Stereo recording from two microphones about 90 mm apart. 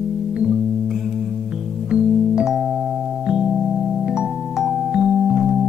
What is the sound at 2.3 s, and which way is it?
Music, 5° right (ahead or behind).